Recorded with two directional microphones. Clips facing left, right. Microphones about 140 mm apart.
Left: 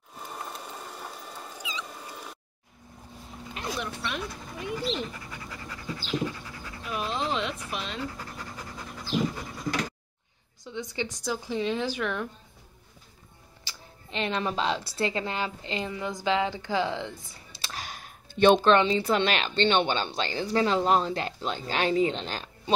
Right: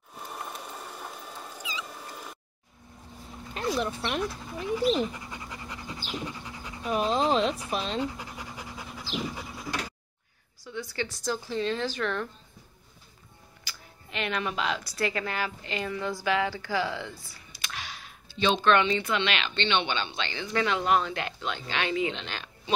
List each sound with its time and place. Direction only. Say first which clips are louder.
0.1 s cat: even; centre (ahead or behind)
3.5 s speech: right 5 dB; 35° right (ahead or behind)
5.3 s pant: right 1 dB; 20° right (ahead or behind)
6.9 s speech: right 5 dB; 35° right (ahead or behind)
8.0 s pant: right 3 dB; 15° right (ahead or behind)
10.6 s speech: left 1 dB; 20° left (ahead or behind)
13.7 s a woman's voice: left 2 dB; 25° left (ahead or behind)
17.8 s computer keyboard: left 2 dB; 45° left (ahead or behind)
18.6 s a woman's voice: left 2 dB; 30° left (ahead or behind)